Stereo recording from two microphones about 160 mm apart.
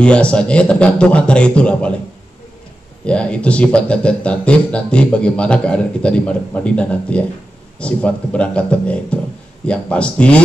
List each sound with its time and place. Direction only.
0.0 s speech: 5° left (ahead or behind)
3.1 s speech: 5° left (ahead or behind)